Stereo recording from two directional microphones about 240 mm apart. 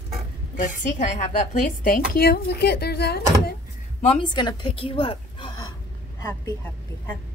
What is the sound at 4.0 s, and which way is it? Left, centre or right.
A woman's voice, left.